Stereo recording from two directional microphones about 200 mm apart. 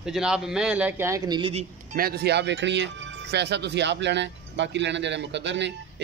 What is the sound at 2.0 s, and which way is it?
Speech, 50° right (ahead or behind).